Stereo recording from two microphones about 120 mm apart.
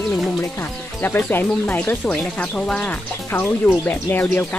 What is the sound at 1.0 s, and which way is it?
Speech, 15° left (ahead or behind).